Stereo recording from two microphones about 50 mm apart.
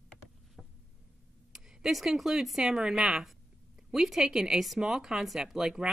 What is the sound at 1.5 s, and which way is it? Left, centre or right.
Speech, centre.